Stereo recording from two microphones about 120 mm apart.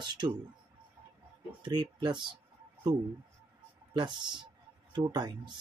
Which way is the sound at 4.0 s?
40° right (ahead or behind).